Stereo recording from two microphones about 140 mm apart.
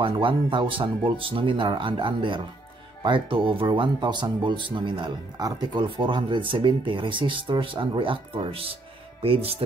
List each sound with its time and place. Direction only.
0.0 s speech: 35° right (ahead or behind)